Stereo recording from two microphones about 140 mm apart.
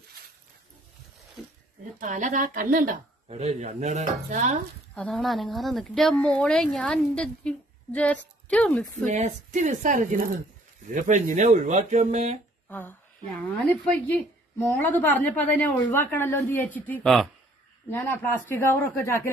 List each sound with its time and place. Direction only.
2.0 s speech: 65° right (ahead or behind)
3.3 s speech: 50° right (ahead or behind); by 4.6 s 65° right (ahead or behind)
4.9 s speech: 5° left (ahead or behind)
9.0 s speech: 60° right (ahead or behind)
12.6 s a woman's voice: 15° left (ahead or behind)
17.8 s a woman's voice: 15° left (ahead or behind)